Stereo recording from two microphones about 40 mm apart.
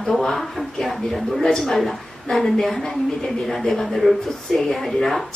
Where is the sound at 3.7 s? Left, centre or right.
Centre.